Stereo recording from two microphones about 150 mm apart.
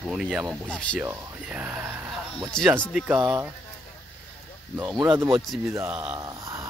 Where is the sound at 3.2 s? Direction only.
20° right (ahead or behind).